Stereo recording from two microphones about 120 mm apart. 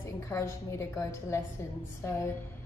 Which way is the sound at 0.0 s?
25° left (ahead or behind).